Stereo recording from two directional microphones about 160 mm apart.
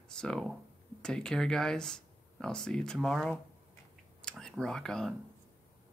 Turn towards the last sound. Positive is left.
turn(degrees=5)  # may be behind; listen again after turning